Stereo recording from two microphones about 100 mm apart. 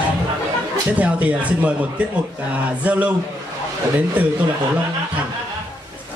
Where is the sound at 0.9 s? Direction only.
15° right (ahead or behind).